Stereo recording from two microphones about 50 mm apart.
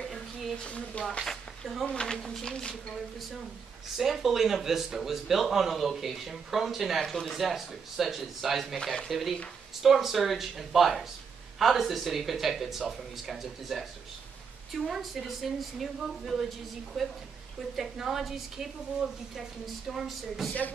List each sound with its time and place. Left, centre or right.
0.0 s a sound: centre
0.7 s speech: left
1.2 s a sound: centre
2.4 s speech: centre
4.0 s speech: centre
8.7 s speech: centre
9.1 s speech: centre